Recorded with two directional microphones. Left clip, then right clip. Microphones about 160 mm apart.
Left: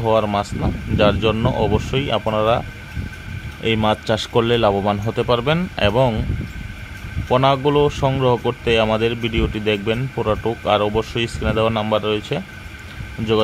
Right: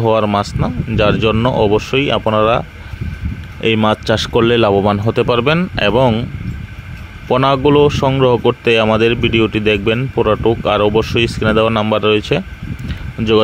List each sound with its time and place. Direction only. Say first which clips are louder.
0.0 s speech: right 4 dB; 30° right (ahead or behind)
3.6 s speech: right 5 dB; 30° right (ahead or behind)
7.2 s speech: right 4 dB; 30° right (ahead or behind)